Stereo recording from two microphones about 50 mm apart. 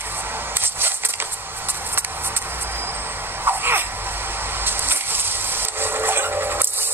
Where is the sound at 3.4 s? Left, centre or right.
Right.